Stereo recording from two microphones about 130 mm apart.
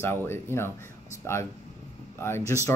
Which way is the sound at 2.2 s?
20° left (ahead or behind).